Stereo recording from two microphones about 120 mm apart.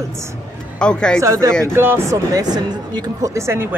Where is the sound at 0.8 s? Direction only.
5° left (ahead or behind).